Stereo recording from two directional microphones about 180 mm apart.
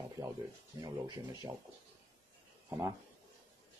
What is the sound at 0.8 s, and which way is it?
Speech, 25° right (ahead or behind).